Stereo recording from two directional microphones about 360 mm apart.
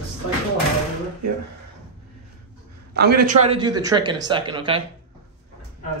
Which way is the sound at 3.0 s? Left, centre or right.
Right.